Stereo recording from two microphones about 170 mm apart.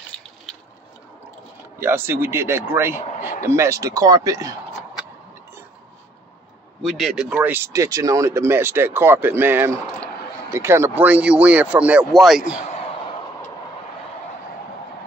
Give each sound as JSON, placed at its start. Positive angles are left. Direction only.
{"t": 1.8, "sound": "speech", "side_deg": -15}
{"t": 6.8, "sound": "speech", "side_deg": 0}
{"t": 12.5, "sound": "a sound", "side_deg": 40}